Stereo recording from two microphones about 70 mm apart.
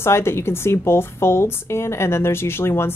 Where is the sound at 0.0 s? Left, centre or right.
Left.